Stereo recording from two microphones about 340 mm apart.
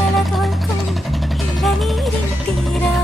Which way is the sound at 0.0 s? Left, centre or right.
Centre.